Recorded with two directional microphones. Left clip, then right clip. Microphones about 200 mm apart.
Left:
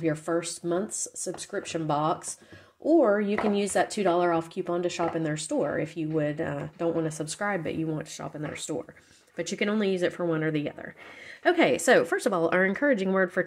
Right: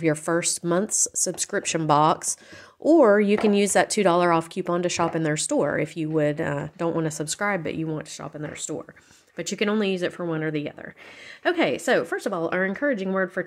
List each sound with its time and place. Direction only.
0.0 s a woman's voice: 25° right (ahead or behind); by 13.5 s centre (ahead or behind)